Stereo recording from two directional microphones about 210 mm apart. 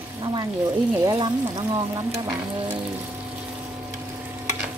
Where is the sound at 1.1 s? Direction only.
20° right (ahead or behind).